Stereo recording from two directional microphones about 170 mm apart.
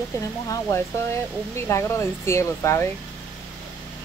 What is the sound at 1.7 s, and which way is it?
Speech, 15° left (ahead or behind).